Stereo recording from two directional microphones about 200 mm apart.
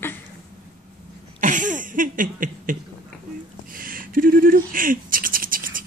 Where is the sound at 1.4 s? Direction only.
40° right (ahead or behind).